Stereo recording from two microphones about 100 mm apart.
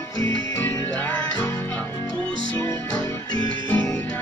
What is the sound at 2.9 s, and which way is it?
Music, 35° left (ahead or behind).